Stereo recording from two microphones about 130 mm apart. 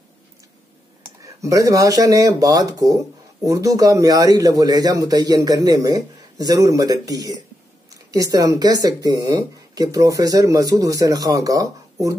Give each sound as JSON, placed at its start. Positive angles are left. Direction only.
{"t": 1.2, "sound": "speech", "side_deg": -25}